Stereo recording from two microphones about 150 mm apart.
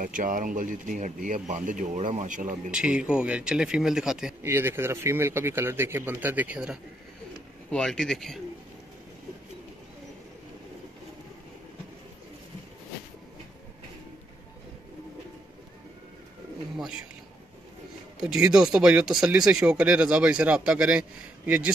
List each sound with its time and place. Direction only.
0.0 s speech: 65° right (ahead or behind)
2.7 s a man's voice: 5° right (ahead or behind)
4.4 s a man's voice: 15° right (ahead or behind)
7.7 s speech: 5° left (ahead or behind)
18.2 s a man's voice: 5° right (ahead or behind)